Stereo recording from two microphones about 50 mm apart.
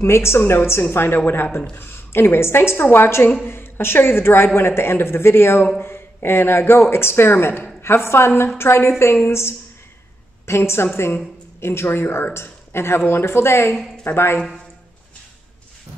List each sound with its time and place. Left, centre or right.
0.0 s a woman's voice: left
2.8 s a woman's voice: left